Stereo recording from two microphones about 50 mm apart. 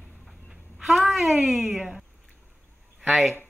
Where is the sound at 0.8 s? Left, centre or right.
Centre.